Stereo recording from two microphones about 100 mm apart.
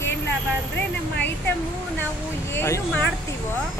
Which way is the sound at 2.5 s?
25° left (ahead or behind).